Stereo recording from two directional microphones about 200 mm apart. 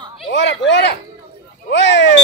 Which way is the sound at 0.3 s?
60° left (ahead or behind).